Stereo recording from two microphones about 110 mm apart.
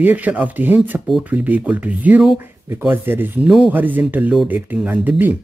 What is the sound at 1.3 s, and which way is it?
Speech, 15° right (ahead or behind).